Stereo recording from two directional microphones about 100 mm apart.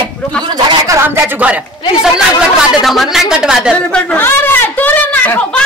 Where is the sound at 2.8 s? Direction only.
Centre (ahead or behind).